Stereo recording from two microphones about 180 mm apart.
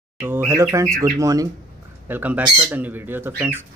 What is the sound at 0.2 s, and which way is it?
Speech, 10° right (ahead or behind).